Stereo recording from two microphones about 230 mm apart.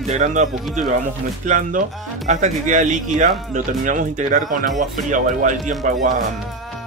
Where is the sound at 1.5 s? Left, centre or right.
Right.